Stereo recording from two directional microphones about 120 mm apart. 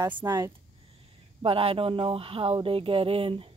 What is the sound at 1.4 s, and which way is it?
Speech, 50° right (ahead or behind).